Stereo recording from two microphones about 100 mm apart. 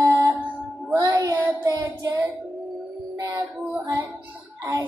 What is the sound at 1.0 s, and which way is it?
Music, 45° right (ahead or behind).